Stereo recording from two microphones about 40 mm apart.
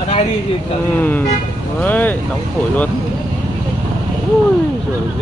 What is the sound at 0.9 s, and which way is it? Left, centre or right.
Speech, left.